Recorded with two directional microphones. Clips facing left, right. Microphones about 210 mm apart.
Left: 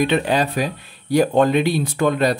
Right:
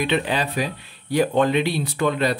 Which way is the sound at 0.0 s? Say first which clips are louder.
Left 4 dB; 45° left (ahead or behind).